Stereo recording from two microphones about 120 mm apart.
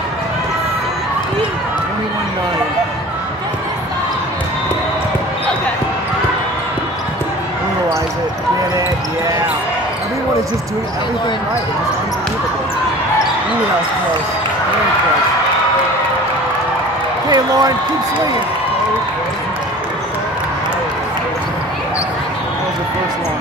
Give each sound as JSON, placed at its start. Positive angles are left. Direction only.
{"t": 17.3, "sound": "speech", "side_deg": -35}